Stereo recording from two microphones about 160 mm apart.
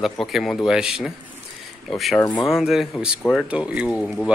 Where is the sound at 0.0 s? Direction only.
Centre (ahead or behind).